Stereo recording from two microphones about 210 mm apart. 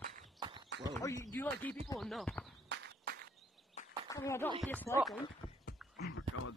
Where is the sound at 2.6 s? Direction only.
55° right (ahead or behind).